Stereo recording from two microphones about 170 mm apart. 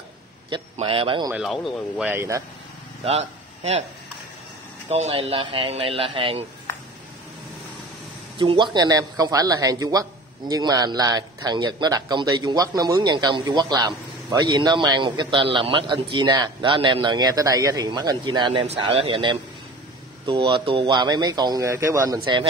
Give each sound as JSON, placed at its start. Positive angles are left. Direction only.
{"t": 0.5, "sound": "speech", "side_deg": -30}
{"t": 1.3, "sound": "speech", "side_deg": 0}
{"t": 3.1, "sound": "speech", "side_deg": -40}
{"t": 4.8, "sound": "speech", "side_deg": -40}
{"t": 8.4, "sound": "speech", "side_deg": -30}